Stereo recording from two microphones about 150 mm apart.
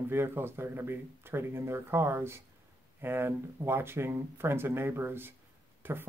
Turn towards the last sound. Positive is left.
turn(degrees=-15)  # may be behind; listen again after turning